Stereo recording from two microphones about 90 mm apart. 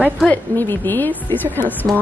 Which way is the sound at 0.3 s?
20° left (ahead or behind).